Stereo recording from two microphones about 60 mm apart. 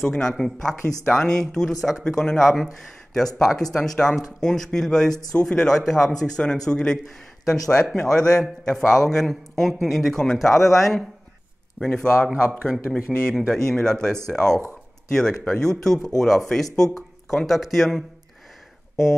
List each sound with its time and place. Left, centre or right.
0.0 s a man's voice: centre
2.5 s a man's voice: centre
11.8 s a man's voice: centre